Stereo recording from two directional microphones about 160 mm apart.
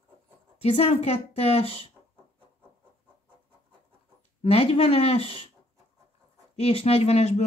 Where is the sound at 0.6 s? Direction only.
40° left (ahead or behind).